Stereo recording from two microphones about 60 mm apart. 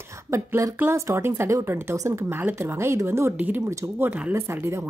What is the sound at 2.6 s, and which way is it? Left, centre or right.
Speech, right.